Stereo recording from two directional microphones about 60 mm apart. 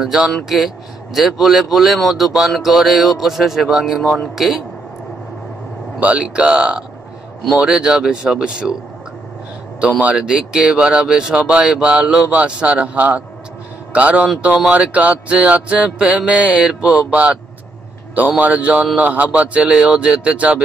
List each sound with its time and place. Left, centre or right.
0.0 s speech: centre
5.9 s speech: right
9.8 s speech: right
18.4 s speech: right